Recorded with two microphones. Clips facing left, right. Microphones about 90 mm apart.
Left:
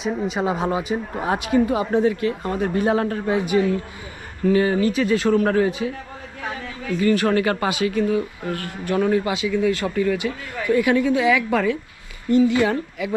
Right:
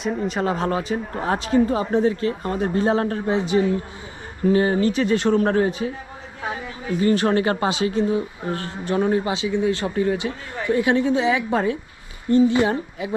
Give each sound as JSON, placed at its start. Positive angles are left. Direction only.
{"t": 0.0, "sound": "a woman's voice", "side_deg": 0}
{"t": 2.6, "sound": "a woman's voice", "side_deg": -25}
{"t": 6.4, "sound": "a woman's voice", "side_deg": -15}